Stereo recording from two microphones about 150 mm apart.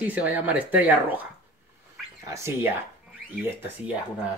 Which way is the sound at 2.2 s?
20° right (ahead or behind).